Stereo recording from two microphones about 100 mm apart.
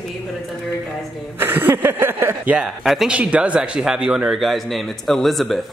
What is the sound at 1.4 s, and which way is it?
Speech, 20° right (ahead or behind).